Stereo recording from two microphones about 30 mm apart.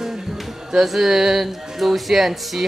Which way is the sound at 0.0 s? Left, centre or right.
Centre.